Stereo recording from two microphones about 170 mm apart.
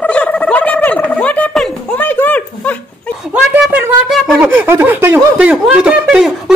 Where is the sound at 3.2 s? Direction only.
5° right (ahead or behind).